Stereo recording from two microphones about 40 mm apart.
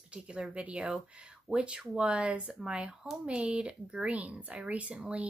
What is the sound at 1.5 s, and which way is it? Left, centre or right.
Speech, right.